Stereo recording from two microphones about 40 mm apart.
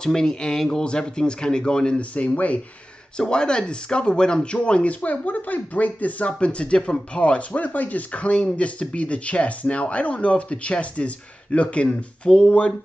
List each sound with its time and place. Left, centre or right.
0.0 s speech: centre
2.0 s speech: left
3.2 s speech: left
5.0 s speech: left
6.4 s speech: left